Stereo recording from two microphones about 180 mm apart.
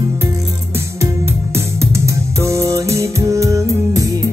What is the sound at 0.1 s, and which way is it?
Music, 15° right (ahead or behind).